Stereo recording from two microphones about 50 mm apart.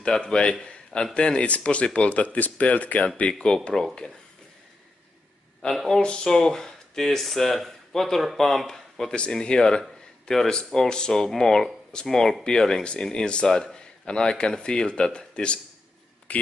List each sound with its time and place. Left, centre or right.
0.0 s speech: centre; by 3.1 s left
3.3 s speech: centre
5.6 s speech: centre
6.3 s speech: centre
16.3 s a sound: left